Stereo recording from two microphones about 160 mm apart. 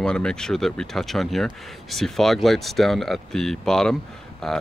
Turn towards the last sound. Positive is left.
turn(degrees=5)  # may be behind; listen again after turning